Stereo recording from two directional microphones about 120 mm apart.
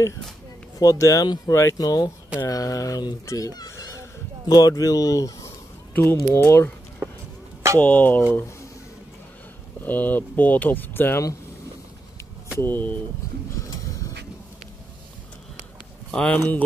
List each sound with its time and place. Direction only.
0.7 s speech: 25° left (ahead or behind)
5.9 s speech: 20° left (ahead or behind)
7.0 s a sound: 15° right (ahead or behind)
7.8 s speech: 15° left (ahead or behind)
9.8 s speech: 15° left (ahead or behind)
12.5 s speech: 15° left (ahead or behind)
13.6 s a sound: 30° left (ahead or behind)
16.1 s speech: 10° left (ahead or behind)